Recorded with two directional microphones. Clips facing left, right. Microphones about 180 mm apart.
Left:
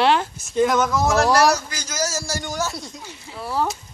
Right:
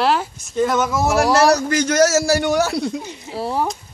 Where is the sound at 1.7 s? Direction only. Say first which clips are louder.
Right 12 dB; 65° right (ahead or behind).